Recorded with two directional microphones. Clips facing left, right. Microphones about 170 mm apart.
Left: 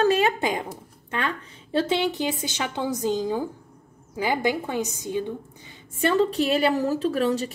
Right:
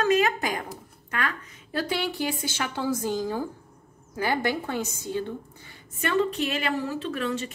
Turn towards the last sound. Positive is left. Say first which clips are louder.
# left 6 dB
turn(degrees=35)  # may be behind; listen again after turning